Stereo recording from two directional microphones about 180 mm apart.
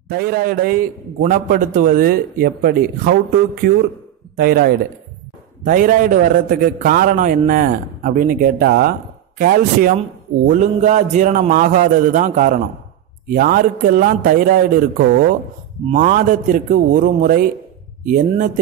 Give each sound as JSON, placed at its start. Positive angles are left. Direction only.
{"t": 0.1, "sound": "a man's voice", "side_deg": -60}
{"t": 4.4, "sound": "a man's voice", "side_deg": -60}